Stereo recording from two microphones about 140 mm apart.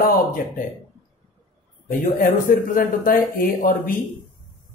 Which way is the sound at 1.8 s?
85° left.